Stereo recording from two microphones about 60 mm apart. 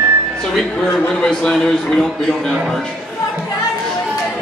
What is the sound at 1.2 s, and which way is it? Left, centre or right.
A man's voice, centre.